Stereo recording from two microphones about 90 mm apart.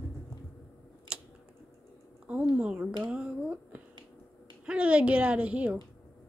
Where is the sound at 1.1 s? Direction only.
10° right (ahead or behind).